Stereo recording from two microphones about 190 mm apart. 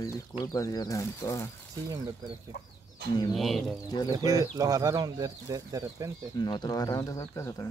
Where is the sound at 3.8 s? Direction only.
20° left (ahead or behind).